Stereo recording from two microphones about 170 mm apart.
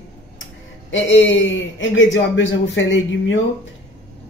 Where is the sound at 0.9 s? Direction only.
90° left.